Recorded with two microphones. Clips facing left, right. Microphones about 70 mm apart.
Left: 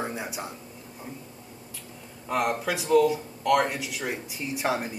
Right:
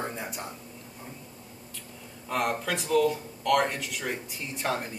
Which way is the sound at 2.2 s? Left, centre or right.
Centre.